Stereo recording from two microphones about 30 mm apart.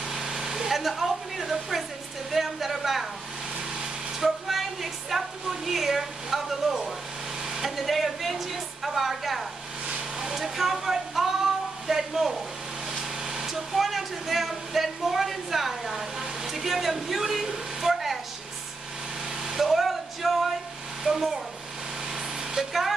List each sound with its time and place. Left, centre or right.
0.0 s a sound: centre
0.7 s a woman's voice: centre
4.2 s a woman's voice: centre
7.6 s a woman's voice: centre
17.7 s a sound: centre
19.4 s a sound: centre
21.0 s speech: centre
22.1 s vehicle: centre
22.7 s a woman's voice: centre